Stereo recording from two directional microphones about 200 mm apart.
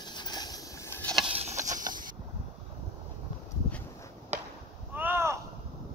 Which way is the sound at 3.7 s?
10° left (ahead or behind).